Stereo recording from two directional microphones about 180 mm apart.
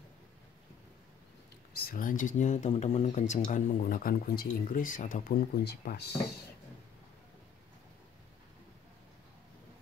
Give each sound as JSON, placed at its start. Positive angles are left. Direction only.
{"t": 1.7, "sound": "speech", "side_deg": 55}